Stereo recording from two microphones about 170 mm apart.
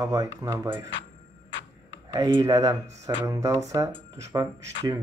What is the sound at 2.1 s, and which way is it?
Speech, 20° right (ahead or behind).